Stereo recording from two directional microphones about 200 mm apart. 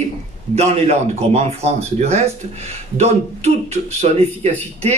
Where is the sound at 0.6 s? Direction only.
30° right (ahead or behind).